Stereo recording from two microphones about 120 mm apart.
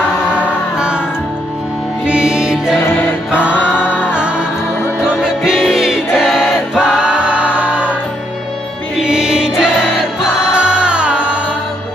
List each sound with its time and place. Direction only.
0.3 s music: 10° right (ahead or behind)
2.0 s music: 5° right (ahead or behind)
3.7 s music: 15° left (ahead or behind)
5.1 s music: 5° right (ahead or behind)
9.0 s music: 5° right (ahead or behind)